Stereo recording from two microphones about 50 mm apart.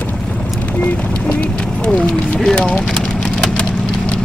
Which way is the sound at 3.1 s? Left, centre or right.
Centre.